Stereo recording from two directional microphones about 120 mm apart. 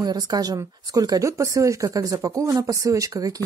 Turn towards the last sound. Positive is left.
turn(degrees=-30)  # may be behind; listen again after turning